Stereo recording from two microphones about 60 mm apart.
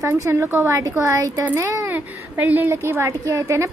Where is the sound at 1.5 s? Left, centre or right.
Right.